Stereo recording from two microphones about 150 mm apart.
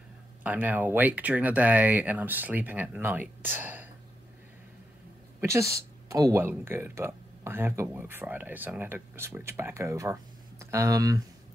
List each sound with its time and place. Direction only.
0.4 s speech: 10° right (ahead or behind)
5.4 s speech: 20° right (ahead or behind)